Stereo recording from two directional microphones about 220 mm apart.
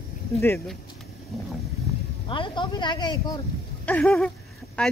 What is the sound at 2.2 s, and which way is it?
Speech, 20° left (ahead or behind).